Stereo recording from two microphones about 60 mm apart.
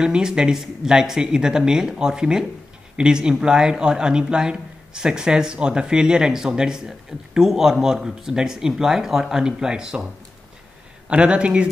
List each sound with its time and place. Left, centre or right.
0.0 s speech: centre
11.1 s speech: centre